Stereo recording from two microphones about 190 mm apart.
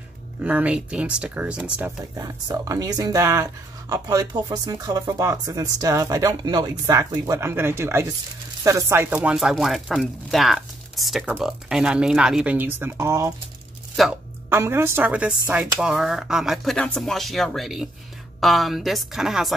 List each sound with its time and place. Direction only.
0.4 s speech: 5° right (ahead or behind)
14.0 s speech: centre (ahead or behind)
14.5 s speech: 15° right (ahead or behind)